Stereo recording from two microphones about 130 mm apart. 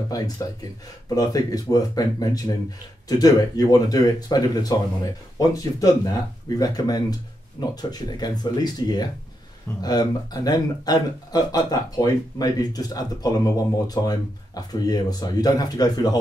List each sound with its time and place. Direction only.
0.4 s speech: 25° left (ahead or behind)